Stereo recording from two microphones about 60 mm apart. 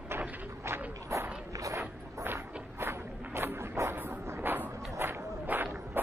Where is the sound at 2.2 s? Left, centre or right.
Right.